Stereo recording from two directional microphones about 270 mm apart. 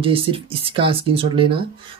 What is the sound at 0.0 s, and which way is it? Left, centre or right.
Speech, centre.